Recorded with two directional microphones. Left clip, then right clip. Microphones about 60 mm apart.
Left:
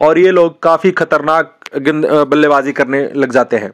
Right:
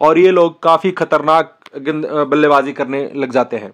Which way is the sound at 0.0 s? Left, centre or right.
Left.